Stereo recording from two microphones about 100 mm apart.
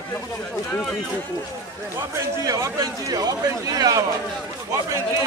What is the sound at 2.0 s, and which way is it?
A man's voice, 35° right (ahead or behind).